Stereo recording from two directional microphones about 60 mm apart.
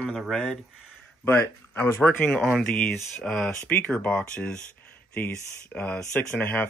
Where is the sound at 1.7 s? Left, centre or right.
Left.